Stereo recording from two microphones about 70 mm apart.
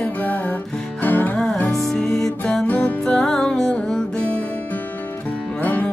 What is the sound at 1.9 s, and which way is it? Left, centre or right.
Music, centre.